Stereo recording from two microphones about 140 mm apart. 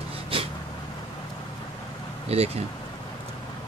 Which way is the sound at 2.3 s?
50° right (ahead or behind).